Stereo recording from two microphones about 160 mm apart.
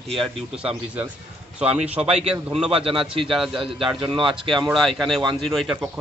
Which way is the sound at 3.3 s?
5° right (ahead or behind).